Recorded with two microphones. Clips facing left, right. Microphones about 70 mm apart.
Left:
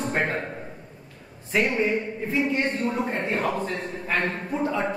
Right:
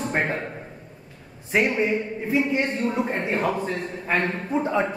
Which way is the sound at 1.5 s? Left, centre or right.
Centre.